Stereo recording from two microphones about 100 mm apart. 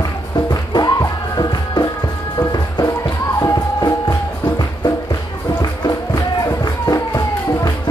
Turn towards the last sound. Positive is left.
turn(degrees=40)  # may be behind; listen again after turning